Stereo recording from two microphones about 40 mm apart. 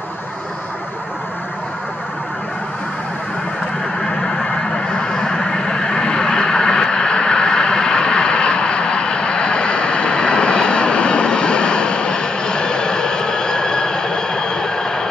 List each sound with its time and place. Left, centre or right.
4.0 s vehicle: centre